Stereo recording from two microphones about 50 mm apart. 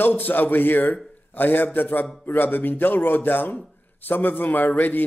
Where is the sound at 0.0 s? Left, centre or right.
Left.